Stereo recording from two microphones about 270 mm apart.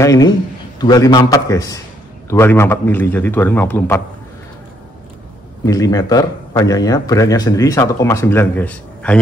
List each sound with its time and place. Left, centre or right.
0.0 s speech: centre
5.7 s speech: centre